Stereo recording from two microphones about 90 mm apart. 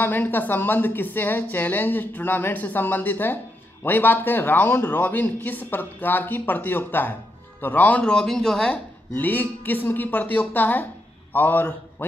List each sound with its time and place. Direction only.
0.0 s a woman's voice: 20° left (ahead or behind)
9.1 s a woman's voice: 20° left (ahead or behind)